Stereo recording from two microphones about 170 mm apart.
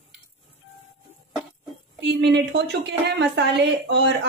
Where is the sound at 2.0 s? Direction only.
90° right.